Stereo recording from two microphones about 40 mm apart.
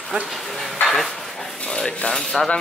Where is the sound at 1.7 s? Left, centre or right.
Centre.